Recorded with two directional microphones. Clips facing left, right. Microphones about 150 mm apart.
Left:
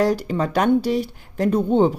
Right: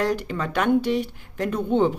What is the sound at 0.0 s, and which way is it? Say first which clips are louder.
A woman's voice: left 5 dB; 35° left (ahead or behind).